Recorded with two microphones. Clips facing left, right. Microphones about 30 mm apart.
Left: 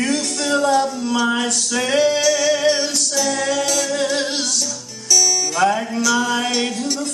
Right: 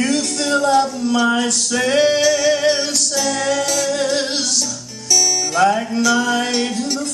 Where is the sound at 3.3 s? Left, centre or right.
Right.